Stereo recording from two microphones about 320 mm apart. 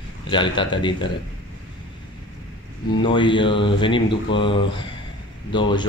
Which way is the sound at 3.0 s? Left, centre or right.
Centre.